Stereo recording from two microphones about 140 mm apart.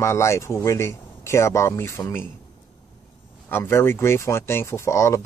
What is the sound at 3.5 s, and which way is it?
Speech, 20° left (ahead or behind).